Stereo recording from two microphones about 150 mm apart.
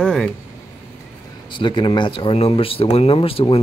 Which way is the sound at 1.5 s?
30° left (ahead or behind).